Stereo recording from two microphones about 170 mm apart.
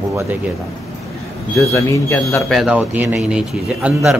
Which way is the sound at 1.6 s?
15° left (ahead or behind).